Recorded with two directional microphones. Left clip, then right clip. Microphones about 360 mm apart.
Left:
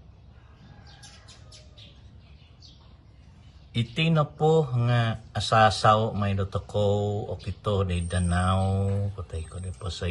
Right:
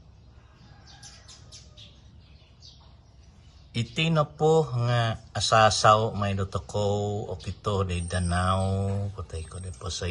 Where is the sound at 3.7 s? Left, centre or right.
Centre.